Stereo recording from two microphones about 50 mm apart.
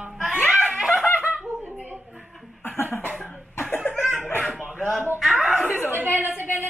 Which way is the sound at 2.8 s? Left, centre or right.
Left.